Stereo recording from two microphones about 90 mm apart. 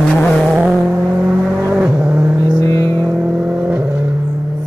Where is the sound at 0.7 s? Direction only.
15° right (ahead or behind).